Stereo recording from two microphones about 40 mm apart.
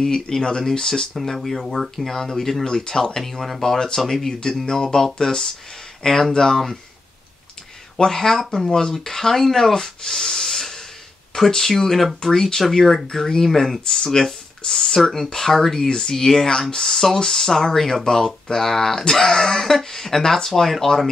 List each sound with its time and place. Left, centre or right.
0.0 s speech: centre
1.1 s speech: centre
2.6 s speech: centre
8.0 s speech: centre
13.8 s speech: centre